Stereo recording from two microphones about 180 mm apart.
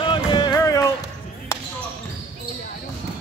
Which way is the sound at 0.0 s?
25° left (ahead or behind).